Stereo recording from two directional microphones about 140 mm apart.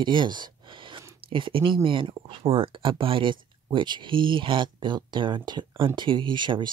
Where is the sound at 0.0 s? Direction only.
35° right (ahead or behind).